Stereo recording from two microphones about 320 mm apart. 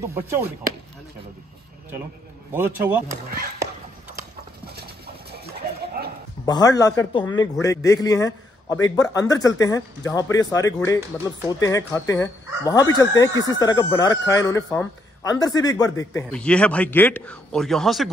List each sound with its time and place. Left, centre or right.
0.0 s speech: centre
2.5 s speech: centre
6.0 s a sound: right
6.4 s a man's voice: centre
13.3 s speech: centre
13.6 s speech: centre